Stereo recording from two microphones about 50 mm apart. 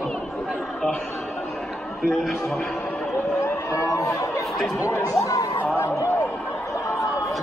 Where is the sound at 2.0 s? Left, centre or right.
Centre.